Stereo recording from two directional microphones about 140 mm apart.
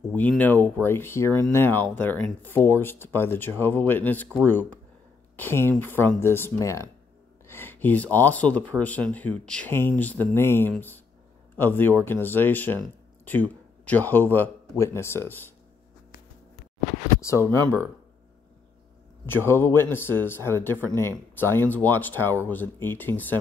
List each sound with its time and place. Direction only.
0.4 s a man's voice: 10° left (ahead or behind)
17.2 s speech: 20° left (ahead or behind)
19.2 s speech: 15° left (ahead or behind)